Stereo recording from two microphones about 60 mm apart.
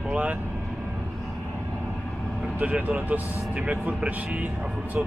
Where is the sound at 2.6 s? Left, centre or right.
Right.